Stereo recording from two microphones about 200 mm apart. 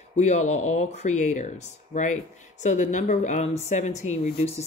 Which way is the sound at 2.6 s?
40° left (ahead or behind).